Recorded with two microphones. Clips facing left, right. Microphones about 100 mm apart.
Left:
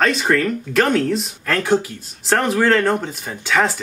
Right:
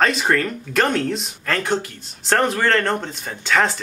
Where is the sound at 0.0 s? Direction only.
Centre (ahead or behind).